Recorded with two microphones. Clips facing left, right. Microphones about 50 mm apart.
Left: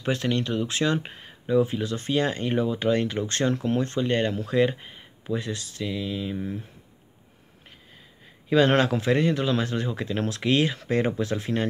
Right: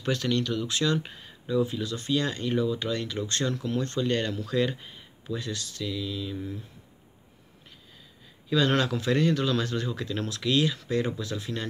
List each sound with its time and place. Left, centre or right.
0.0 s speech: left
8.5 s speech: left